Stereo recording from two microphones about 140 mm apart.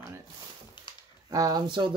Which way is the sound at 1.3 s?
25° right (ahead or behind).